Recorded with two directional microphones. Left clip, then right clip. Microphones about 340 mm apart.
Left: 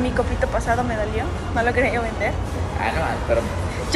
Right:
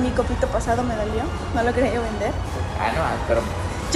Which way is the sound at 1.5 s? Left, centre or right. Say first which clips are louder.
Left 1 dB; centre.